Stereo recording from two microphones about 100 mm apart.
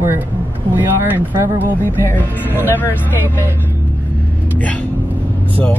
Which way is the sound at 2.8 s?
20° left (ahead or behind).